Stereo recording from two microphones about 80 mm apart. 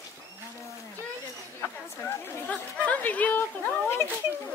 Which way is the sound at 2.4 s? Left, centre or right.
Centre.